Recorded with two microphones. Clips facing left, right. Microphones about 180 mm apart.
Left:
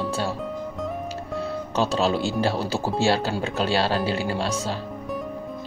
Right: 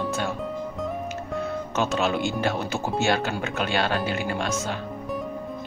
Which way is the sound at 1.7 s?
35° left (ahead or behind).